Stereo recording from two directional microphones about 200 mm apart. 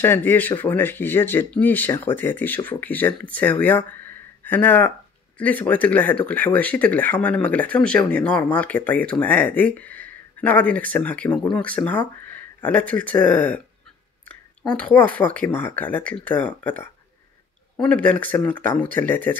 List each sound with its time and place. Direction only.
0.0 s speech: 10° left (ahead or behind)